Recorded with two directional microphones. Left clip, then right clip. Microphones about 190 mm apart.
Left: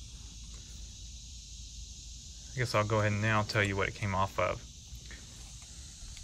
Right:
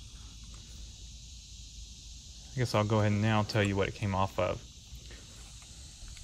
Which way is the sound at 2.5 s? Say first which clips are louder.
Even; 15° right (ahead or behind).